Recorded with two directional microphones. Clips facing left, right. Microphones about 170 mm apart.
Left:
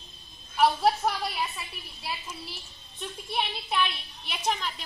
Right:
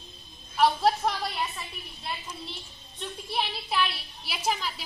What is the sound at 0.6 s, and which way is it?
A woman's voice, centre (ahead or behind).